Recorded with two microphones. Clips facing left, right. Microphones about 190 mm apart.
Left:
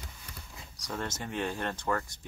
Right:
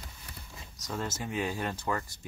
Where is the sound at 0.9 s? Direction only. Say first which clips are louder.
Right 1 dB; 5° right (ahead or behind).